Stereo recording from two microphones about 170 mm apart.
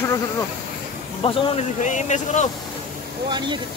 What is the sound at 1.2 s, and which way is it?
Speech, 40° left (ahead or behind).